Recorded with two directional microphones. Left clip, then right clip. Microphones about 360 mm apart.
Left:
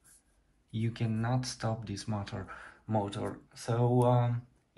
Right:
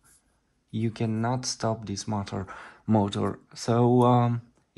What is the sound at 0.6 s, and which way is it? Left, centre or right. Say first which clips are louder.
Speech: right 7 dB; centre.